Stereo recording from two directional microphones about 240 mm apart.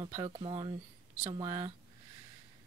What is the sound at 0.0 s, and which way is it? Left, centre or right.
Speech, centre.